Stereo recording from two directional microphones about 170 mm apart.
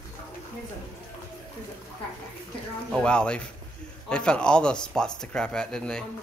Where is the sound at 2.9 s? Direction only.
5° left (ahead or behind).